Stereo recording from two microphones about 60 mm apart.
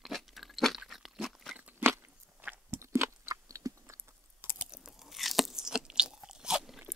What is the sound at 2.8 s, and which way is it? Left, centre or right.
Chewing, right.